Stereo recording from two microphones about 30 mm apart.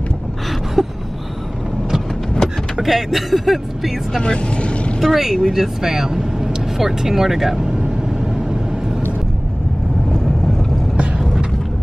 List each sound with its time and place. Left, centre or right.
0.8 s speech: centre
2.8 s speech: centre
4.2 s speech: left
5.0 s speech: centre